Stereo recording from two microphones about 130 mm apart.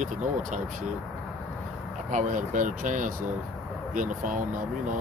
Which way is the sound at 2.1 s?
75° right (ahead or behind).